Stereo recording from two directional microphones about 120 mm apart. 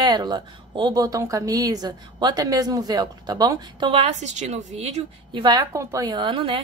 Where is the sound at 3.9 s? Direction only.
65° right (ahead or behind).